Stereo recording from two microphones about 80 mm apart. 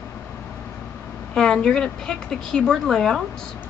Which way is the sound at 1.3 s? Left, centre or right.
Centre.